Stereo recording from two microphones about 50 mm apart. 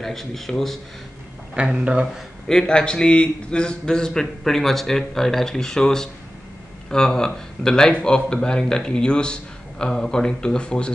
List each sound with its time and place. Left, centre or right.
0.0 s speech: centre
1.5 s speech: right
2.4 s speech: centre